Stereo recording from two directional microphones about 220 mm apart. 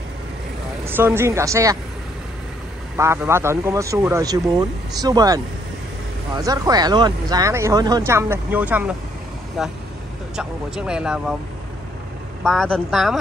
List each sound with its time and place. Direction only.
0.8 s speech: 10° right (ahead or behind)
3.0 s speech: 10° right (ahead or behind)
12.4 s speech: 5° left (ahead or behind)